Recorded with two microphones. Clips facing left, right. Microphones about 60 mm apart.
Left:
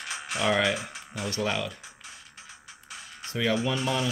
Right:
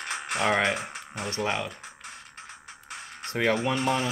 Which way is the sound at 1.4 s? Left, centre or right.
Right.